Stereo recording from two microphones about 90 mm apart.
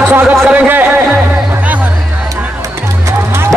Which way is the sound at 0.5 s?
20° right (ahead or behind).